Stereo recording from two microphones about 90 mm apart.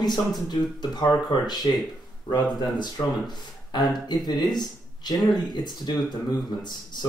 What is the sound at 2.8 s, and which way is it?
Speech, 55° left (ahead or behind).